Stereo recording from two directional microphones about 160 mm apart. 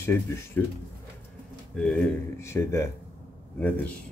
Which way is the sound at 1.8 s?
5° left (ahead or behind).